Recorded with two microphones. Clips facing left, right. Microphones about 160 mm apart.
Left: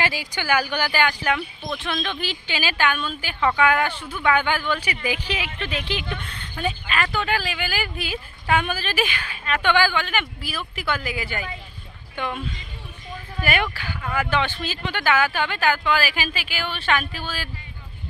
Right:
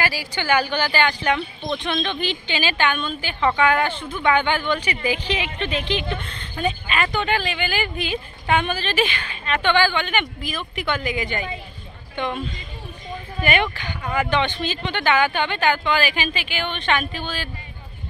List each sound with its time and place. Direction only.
0.0 s speech: 20° left (ahead or behind)
6.6 s a woman's voice: centre (ahead or behind)